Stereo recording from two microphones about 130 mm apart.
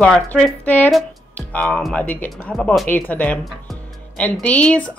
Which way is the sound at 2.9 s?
15° left (ahead or behind).